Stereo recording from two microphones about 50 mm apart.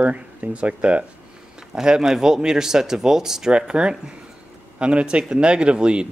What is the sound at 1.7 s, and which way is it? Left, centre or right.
A man's voice, centre.